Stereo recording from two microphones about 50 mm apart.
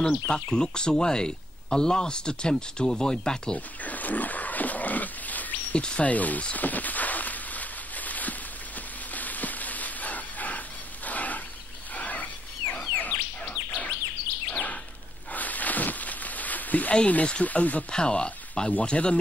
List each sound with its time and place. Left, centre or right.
0.1 s speech: centre
3.5 s pig: left
5.8 s speech: left
6.5 s a sound: left
11.1 s wild animals: left
12.9 s bird: left
15.3 s a sound: left
16.9 s speech: left
17.9 s speech: centre